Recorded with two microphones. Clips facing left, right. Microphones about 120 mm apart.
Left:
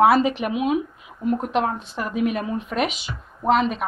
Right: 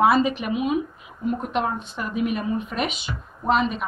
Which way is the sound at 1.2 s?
65° left (ahead or behind).